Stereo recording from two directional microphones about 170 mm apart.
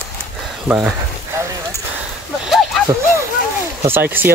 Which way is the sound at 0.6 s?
5° right (ahead or behind).